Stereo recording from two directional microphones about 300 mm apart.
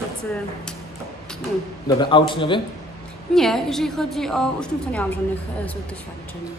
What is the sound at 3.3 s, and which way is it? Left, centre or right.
A woman's voice, centre.